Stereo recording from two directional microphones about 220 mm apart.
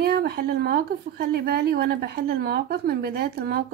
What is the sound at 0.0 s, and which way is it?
Speech, 45° right (ahead or behind).